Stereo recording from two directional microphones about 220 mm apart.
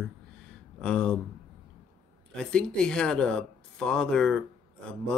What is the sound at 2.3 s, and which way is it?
Speech, 5° left (ahead or behind).